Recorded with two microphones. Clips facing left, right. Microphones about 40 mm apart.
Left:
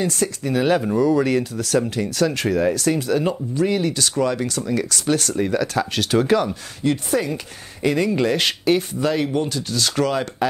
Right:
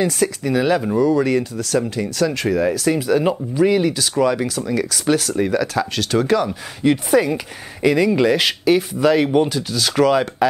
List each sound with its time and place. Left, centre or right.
0.0 s speech: centre
6.8 s speech: centre
7.8 s speech: centre
8.1 s speech: centre
8.4 s speech: centre
9.0 s speech: centre
9.7 s speech: centre